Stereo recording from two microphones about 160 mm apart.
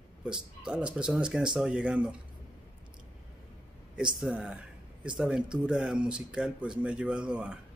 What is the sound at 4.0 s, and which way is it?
Speech, 5° right (ahead or behind).